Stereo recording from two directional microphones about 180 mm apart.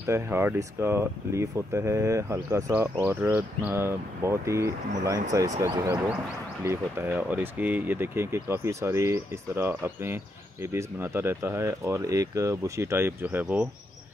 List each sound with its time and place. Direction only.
0.0 s speech: 15° right (ahead or behind)